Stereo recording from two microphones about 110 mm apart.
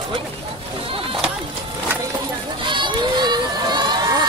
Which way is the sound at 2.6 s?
45° right (ahead or behind).